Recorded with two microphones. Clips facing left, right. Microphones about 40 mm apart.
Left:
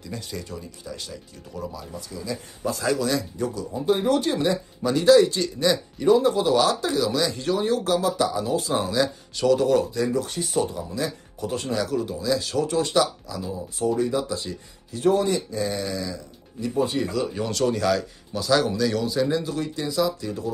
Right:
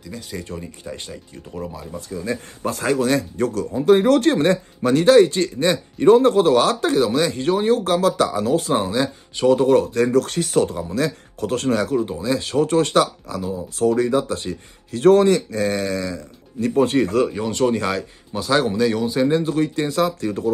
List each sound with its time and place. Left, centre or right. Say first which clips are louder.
0.4 s speech: right 4 dB; right
8.0 s speech: right 5 dB; right
8.8 s speech: right 2 dB; right
11.9 s speech: right 3 dB; right
13.5 s speech: right 6 dB; right
14.3 s speech: right 4 dB; right
17.5 s speech: right 2 dB; right
19.1 s speech: right 6 dB; right